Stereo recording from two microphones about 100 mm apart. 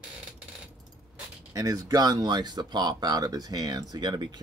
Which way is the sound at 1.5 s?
35° right (ahead or behind).